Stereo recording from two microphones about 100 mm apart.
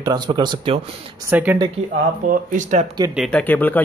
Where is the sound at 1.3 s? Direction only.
20° right (ahead or behind).